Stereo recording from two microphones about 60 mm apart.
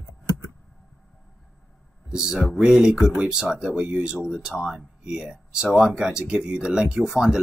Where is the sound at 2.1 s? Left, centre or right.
Centre.